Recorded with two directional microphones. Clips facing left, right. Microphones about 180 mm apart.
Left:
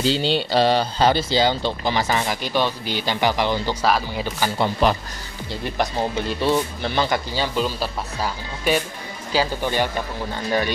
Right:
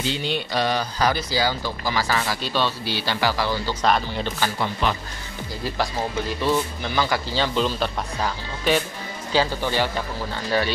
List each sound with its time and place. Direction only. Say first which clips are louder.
0.0 s speech: left 5 dB; 30° left (ahead or behind)
3.8 s speech: right 2 dB; 5° left (ahead or behind)
4.8 s speech: left 5 dB; 40° left (ahead or behind)
5.5 s speech: left 2 dB; 20° left (ahead or behind)
7.3 s speech: right 1 dB; 5° left (ahead or behind)